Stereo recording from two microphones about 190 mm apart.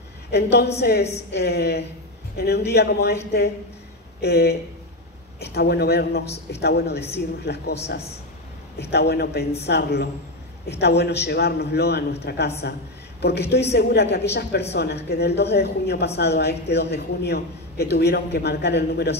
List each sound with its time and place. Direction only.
0.3 s a man's voice: 60° left (ahead or behind)
8.9 s a man's voice: 60° left (ahead or behind)